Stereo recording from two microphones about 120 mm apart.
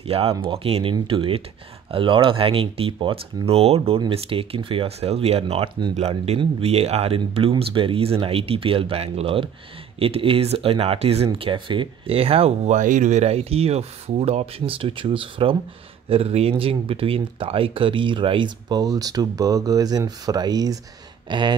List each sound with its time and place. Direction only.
0.0 s speech: 55° right (ahead or behind)
11.3 s speech: 45° right (ahead or behind)
21.3 s a sound: 40° right (ahead or behind)